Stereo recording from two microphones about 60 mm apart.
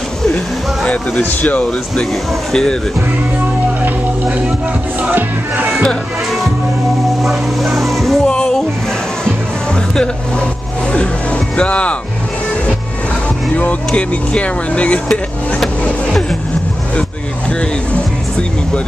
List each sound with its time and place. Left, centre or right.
0.8 s speech: left
2.5 s a sound: centre
7.2 s speech: centre
8.3 s music: centre
13.8 s speech: centre
16.1 s a sound: centre